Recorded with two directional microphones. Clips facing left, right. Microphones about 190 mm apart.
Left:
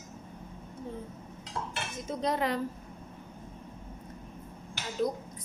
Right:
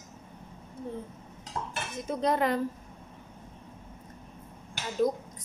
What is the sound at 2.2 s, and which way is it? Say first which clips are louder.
Speech: right 3 dB; 50° right (ahead or behind).